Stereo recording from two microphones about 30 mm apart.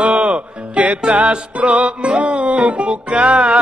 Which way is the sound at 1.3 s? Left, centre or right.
Right.